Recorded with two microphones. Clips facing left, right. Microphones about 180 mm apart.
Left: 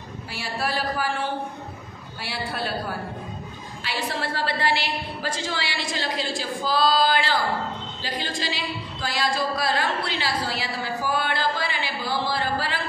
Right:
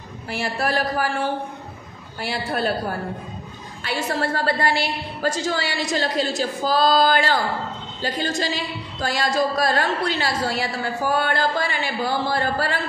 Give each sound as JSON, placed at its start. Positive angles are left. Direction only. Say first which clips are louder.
{"t": 0.4, "sound": "a woman's voice", "louder": "right 4 dB", "side_deg": -45}
{"t": 3.8, "sound": "a woman's voice", "louder": "right 5 dB", "side_deg": -45}